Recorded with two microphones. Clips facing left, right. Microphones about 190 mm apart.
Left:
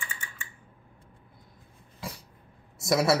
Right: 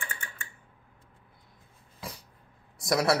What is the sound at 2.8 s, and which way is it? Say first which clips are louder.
Speech: left 2 dB; centre (ahead or behind).